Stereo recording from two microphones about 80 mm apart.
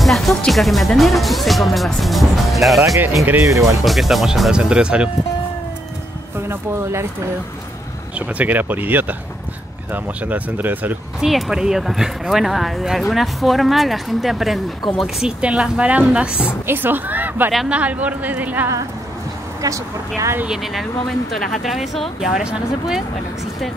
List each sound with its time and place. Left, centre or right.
0.0 s speech: centre
3.3 s speech: right
3.8 s speech: centre
6.3 s speech: right
8.4 s speech: right
11.1 s speech: centre
16.6 s speech: right
19.6 s speech: right
20.4 s speech: centre